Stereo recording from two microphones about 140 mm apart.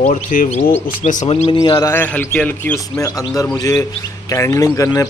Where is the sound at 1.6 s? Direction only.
25° left (ahead or behind); by 2.7 s 10° left (ahead or behind).